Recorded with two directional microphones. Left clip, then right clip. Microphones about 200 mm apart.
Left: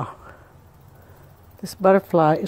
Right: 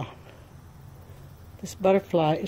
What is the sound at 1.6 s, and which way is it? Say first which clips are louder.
Speech: left 5 dB; 25° left (ahead or behind).